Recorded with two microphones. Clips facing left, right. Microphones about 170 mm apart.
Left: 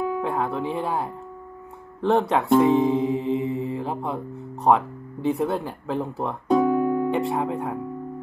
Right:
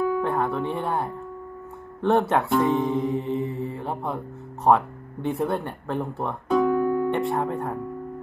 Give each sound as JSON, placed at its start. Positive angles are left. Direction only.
{"t": 0.2, "sound": "speech", "side_deg": 0}
{"t": 6.5, "sound": "music", "side_deg": 20}
{"t": 7.2, "sound": "speech", "side_deg": 0}